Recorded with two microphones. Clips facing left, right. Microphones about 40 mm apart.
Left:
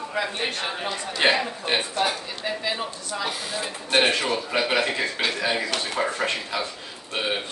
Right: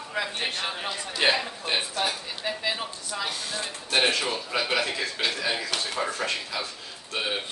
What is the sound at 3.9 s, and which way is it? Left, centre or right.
A woman's voice, left.